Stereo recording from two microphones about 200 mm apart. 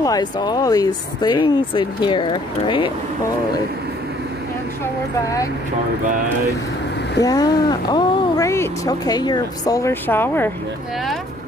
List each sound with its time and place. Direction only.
0.0 s speech: 20° left (ahead or behind)
7.2 s speech: 20° left (ahead or behind)